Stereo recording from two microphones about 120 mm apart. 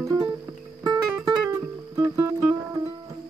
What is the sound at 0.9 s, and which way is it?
Music, 25° right (ahead or behind).